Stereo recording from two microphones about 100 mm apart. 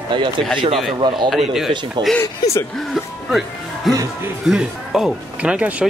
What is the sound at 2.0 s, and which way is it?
Speech, 50° right (ahead or behind).